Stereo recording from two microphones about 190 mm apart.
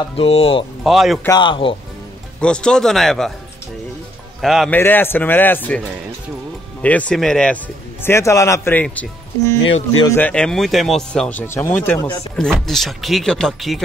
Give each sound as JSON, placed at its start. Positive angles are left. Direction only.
{"t": 0.1, "sound": "speech", "side_deg": 30}
{"t": 0.8, "sound": "speech", "side_deg": 0}
{"t": 1.2, "sound": "a man's voice", "side_deg": 20}
{"t": 2.4, "sound": "speech", "side_deg": 5}
{"t": 4.4, "sound": "speech", "side_deg": 0}
{"t": 4.7, "sound": "speech", "side_deg": 10}
{"t": 6.8, "sound": "speech", "side_deg": 5}
{"t": 8.0, "sound": "speech", "side_deg": 15}
{"t": 10.0, "sound": "speech", "side_deg": 10}